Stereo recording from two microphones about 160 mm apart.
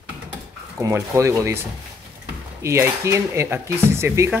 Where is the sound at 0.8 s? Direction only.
20° right (ahead or behind).